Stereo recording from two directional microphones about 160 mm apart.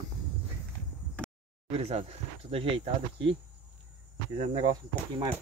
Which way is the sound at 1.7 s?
40° right (ahead or behind).